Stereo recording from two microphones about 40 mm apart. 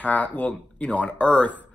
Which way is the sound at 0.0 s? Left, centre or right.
Left.